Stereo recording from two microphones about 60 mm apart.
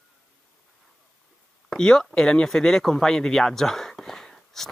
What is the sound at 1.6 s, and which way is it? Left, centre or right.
Speech, centre.